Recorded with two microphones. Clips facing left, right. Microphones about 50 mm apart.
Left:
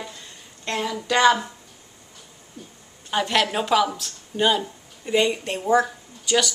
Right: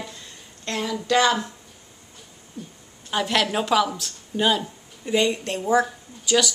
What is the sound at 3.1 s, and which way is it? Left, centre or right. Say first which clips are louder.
A woman's voice: left 1 dB; centre.